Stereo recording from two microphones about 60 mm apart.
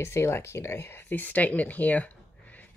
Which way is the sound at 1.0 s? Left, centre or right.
Left.